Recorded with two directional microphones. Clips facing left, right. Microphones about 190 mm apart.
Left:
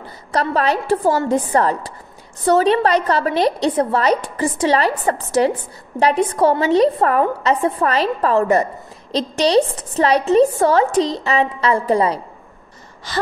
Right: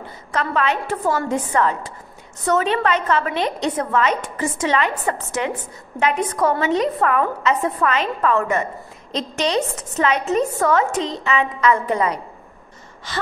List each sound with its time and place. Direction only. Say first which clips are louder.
0.0 s a woman's voice: left 4 dB; 35° left (ahead or behind)